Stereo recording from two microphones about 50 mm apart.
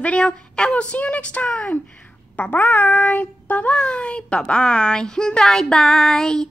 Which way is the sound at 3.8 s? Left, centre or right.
Left.